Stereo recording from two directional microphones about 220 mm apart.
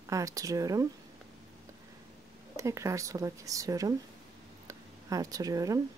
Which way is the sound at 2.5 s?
15° right (ahead or behind).